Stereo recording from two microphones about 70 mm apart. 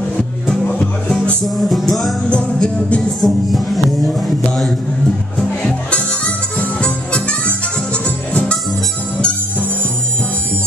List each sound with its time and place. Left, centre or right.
0.7 s music: centre
1.4 s music: centre
2.2 s music: centre
3.2 s music: centre
5.6 s music: centre